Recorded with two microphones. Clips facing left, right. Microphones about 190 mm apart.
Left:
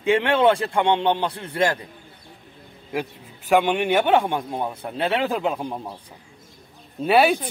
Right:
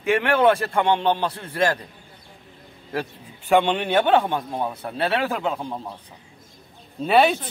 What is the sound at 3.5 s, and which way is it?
Speech, 10° left (ahead or behind).